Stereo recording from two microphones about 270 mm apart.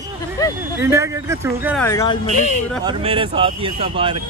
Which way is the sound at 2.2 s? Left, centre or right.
Left.